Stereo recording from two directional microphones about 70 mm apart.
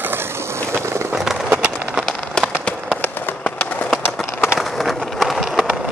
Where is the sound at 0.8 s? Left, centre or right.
Right.